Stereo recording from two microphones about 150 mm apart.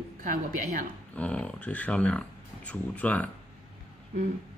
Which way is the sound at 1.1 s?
10° left (ahead or behind).